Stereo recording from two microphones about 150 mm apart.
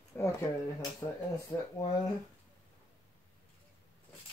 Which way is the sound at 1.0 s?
25° left (ahead or behind).